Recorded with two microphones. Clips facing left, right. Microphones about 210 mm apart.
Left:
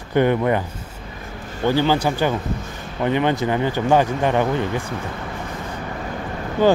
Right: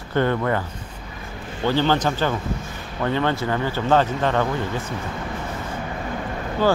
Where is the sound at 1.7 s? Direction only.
10° left (ahead or behind).